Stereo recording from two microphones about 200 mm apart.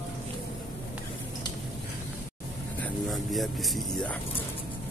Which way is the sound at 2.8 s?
Centre (ahead or behind).